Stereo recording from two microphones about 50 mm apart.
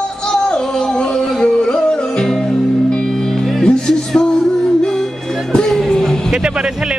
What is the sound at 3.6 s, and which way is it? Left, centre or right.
Music, centre.